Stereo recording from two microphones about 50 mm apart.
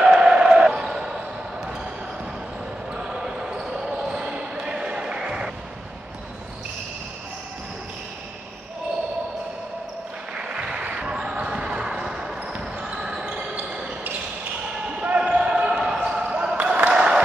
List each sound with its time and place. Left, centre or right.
0.0 s basketball bounce: centre
3.0 s basketball bounce: centre
10.3 s basketball bounce: centre
14.9 s basketball bounce: right
16.2 s basketball bounce: right
16.6 s a sound: right